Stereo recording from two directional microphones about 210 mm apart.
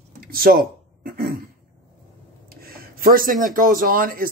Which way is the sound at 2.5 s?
45° right (ahead or behind).